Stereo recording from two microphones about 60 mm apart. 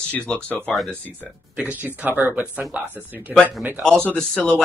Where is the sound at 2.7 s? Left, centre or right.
Right.